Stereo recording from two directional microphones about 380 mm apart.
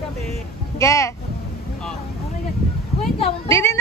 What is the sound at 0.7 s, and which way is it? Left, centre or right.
Music, centre.